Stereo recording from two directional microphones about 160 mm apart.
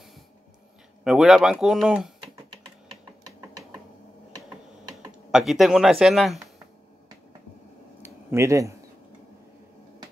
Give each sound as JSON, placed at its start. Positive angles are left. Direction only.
{"t": 1.0, "sound": "speech", "side_deg": 0}
{"t": 5.3, "sound": "speech", "side_deg": 0}
{"t": 8.0, "sound": "a sound", "side_deg": -15}